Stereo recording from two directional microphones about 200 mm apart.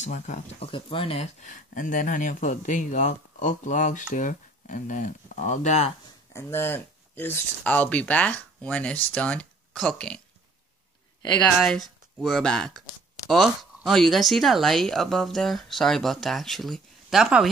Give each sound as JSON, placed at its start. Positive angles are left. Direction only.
{"t": 0.0, "sound": "speech", "side_deg": 35}
{"t": 6.3, "sound": "speech", "side_deg": 10}
{"t": 11.6, "sound": "speech", "side_deg": 0}